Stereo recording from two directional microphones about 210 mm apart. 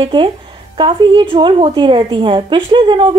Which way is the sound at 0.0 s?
25° right (ahead or behind).